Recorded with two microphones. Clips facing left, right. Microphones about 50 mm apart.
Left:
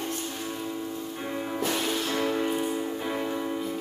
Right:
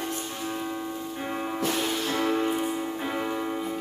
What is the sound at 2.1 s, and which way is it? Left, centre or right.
Music, centre.